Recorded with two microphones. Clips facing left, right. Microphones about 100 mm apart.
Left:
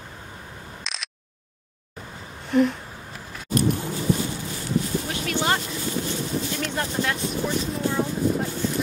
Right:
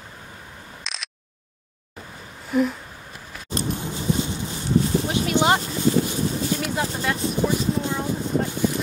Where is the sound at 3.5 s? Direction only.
25° right (ahead or behind).